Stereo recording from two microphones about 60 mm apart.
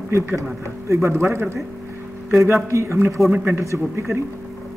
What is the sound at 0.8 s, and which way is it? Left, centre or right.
Speech, right.